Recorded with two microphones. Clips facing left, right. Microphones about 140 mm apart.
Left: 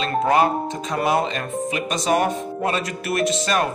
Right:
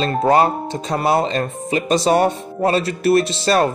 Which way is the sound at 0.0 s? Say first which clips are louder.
Right 3 dB; 35° right (ahead or behind).